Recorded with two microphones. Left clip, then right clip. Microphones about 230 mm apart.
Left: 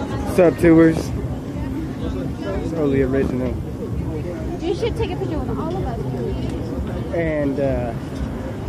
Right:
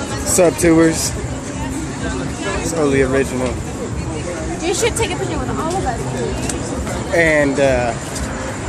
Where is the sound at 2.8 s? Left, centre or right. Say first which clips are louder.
Right 4 dB; centre.